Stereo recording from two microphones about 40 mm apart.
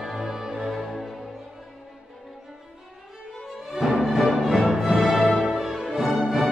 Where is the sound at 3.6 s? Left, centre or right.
Centre.